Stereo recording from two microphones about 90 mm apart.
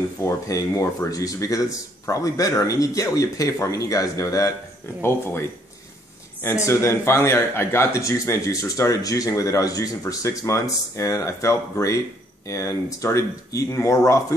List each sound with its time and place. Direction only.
0.2 s speech: 35° left (ahead or behind)
6.4 s speech: 30° left (ahead or behind)